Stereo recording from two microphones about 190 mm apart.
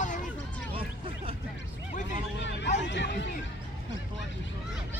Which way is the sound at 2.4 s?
70° left (ahead or behind).